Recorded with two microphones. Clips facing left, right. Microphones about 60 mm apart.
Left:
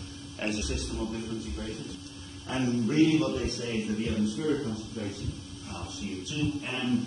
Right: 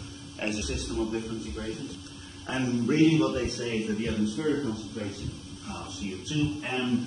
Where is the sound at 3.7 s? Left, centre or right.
Centre.